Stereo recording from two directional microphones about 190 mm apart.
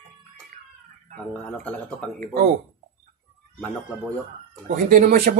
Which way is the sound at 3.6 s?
10° left (ahead or behind).